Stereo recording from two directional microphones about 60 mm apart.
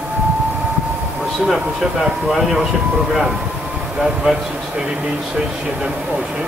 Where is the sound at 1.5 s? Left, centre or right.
Centre.